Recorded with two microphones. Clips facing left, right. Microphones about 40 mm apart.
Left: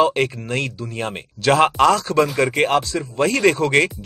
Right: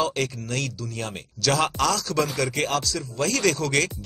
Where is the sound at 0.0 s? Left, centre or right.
Left.